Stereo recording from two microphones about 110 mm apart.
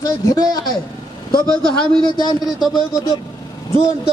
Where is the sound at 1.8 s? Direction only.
40° left (ahead or behind).